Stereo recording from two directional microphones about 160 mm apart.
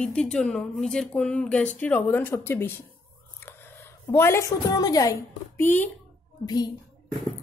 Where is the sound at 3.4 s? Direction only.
15° left (ahead or behind).